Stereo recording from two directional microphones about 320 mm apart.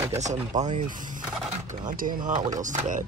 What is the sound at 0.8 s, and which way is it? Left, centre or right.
Gobble, right.